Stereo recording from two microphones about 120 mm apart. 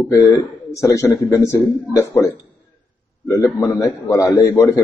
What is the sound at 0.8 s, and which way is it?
Speech, 25° left (ahead or behind).